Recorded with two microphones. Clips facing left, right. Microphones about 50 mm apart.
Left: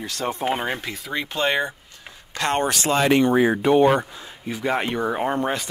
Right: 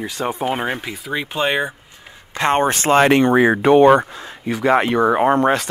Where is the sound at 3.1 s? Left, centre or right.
Right.